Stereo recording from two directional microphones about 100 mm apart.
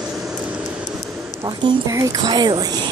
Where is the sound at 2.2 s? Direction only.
45° right (ahead or behind).